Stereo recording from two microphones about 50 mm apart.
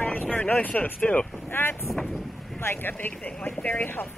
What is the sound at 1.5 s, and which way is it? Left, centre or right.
Speech, left.